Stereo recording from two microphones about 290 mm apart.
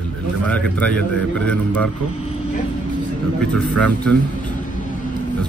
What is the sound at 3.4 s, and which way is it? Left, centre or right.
Speech, centre.